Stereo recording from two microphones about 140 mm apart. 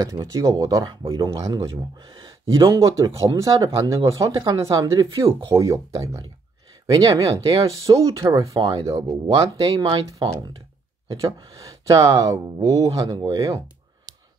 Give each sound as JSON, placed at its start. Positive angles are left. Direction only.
{"t": 0.0, "sound": "speech", "side_deg": -25}
{"t": 11.1, "sound": "speech", "side_deg": -25}